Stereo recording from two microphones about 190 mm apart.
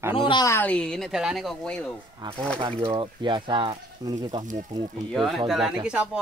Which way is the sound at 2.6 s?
25° right (ahead or behind).